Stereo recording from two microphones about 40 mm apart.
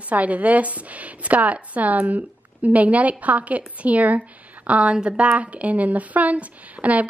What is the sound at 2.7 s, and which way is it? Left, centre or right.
A woman's voice, right.